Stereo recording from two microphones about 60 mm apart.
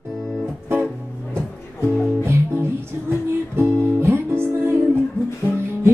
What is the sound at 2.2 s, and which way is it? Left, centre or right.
Music, right.